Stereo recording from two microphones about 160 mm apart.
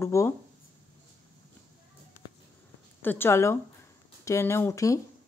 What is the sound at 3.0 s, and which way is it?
A woman's voice, 15° left (ahead or behind).